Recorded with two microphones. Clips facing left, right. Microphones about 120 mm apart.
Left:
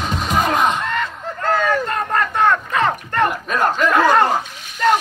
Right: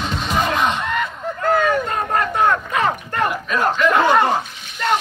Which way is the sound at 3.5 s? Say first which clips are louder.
Even; 45° left (ahead or behind).